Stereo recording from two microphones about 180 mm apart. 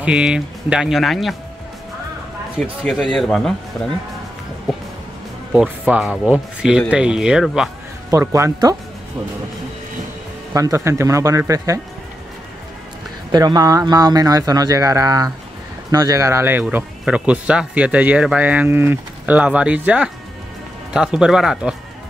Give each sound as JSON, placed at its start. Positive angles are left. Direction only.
{"t": 0.0, "sound": "speech", "side_deg": -5}
{"t": 2.8, "sound": "speech", "side_deg": 0}
{"t": 5.5, "sound": "speech", "side_deg": -5}
{"t": 8.1, "sound": "speech", "side_deg": -15}
{"t": 10.5, "sound": "speech", "side_deg": -15}
{"t": 13.3, "sound": "speech", "side_deg": -20}